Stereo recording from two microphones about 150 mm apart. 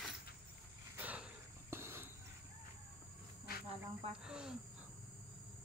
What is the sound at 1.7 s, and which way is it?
Cricket, 15° right (ahead or behind).